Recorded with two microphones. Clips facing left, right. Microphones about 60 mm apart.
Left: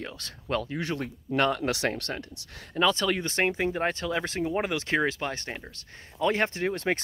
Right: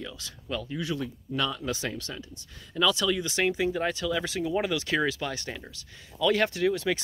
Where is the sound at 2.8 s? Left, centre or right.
Left.